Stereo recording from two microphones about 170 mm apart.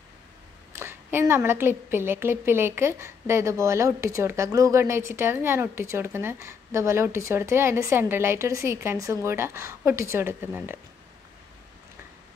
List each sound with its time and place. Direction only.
0.7 s a woman's voice: 15° right (ahead or behind)